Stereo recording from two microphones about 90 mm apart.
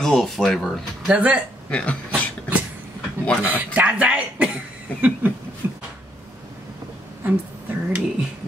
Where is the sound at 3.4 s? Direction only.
20° right (ahead or behind).